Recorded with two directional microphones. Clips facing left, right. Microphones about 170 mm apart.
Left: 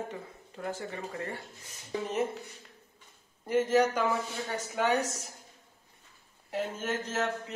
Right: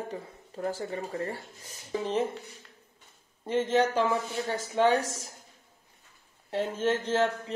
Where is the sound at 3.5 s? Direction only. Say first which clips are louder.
Even; 25° right (ahead or behind).